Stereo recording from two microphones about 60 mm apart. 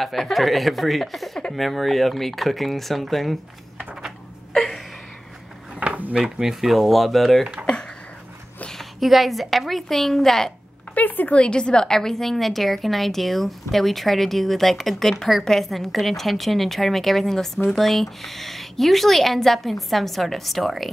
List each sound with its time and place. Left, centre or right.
0.0 s a woman's voice: centre
4.6 s a sound: centre
5.8 s a sound: right
6.1 s a woman's voice: centre
8.6 s a woman's voice: centre
11.0 s a woman's voice: left
11.3 s a woman's voice: centre